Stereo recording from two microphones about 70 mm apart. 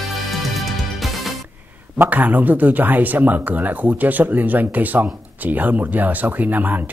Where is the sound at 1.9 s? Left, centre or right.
Right.